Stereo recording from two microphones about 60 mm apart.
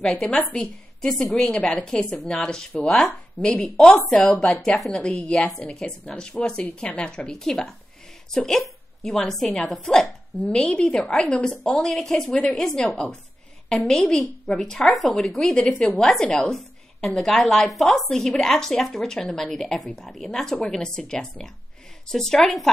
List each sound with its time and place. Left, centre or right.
0.0 s speech: centre
3.3 s a woman's voice: left; by 4.9 s centre
4.9 s a woman's voice: left; by 22.7 s centre